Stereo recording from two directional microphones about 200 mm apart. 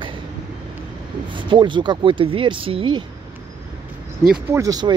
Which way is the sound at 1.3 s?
25° right (ahead or behind).